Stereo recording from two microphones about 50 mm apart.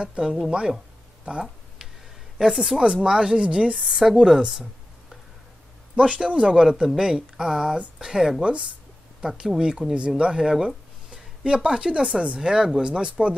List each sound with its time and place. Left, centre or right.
0.0 s speech: centre
1.2 s a sound: centre
2.3 s a woman's voice: centre
2.8 s speech: centre
3.8 s a woman's voice: centre
4.2 s speech: centre
5.9 s speech: centre